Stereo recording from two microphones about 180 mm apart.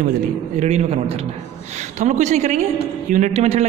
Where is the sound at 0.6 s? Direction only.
35° right (ahead or behind).